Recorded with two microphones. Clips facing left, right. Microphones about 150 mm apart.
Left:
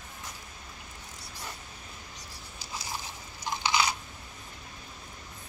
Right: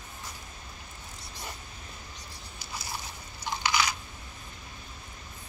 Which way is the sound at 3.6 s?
25° left (ahead or behind).